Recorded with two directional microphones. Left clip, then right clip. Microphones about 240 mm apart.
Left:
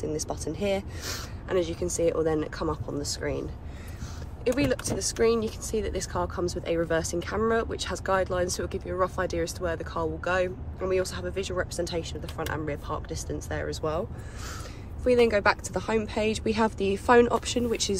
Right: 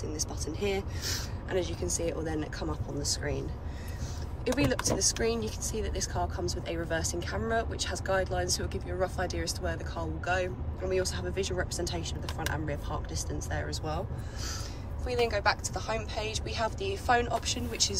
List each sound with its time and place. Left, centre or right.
0.1 s speech: centre
4.6 s speech: centre
15.0 s a woman's voice: left